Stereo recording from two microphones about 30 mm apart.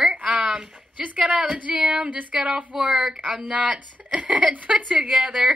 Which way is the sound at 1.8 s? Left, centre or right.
Right.